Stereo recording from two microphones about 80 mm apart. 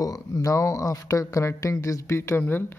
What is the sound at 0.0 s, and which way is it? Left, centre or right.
Speech, left.